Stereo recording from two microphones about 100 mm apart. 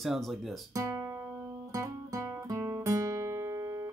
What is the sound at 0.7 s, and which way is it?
Guitar, 30° right (ahead or behind).